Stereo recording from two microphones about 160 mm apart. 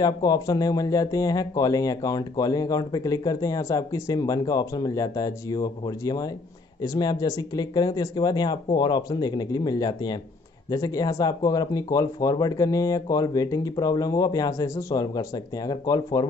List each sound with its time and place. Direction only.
0.0 s speech: 25° left (ahead or behind)